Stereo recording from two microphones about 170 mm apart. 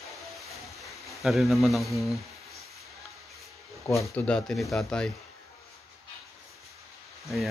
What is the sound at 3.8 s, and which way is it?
Speech, 15° left (ahead or behind).